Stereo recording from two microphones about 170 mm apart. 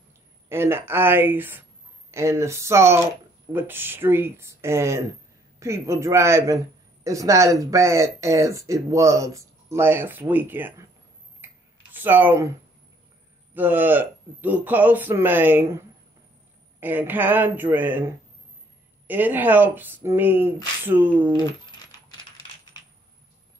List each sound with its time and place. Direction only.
0.5 s speech: 15° right (ahead or behind)
11.4 s a sound: 10° right (ahead or behind)
13.6 s speech: 10° right (ahead or behind)
16.8 s speech: 10° right (ahead or behind)